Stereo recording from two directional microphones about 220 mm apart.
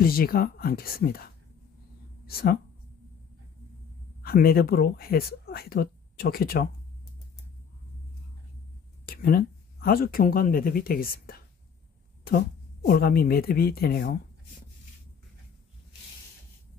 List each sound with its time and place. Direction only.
0.0 s a woman's voice: 40° left (ahead or behind)
4.2 s speech: 45° left (ahead or behind)
9.0 s a woman's voice: 45° left (ahead or behind)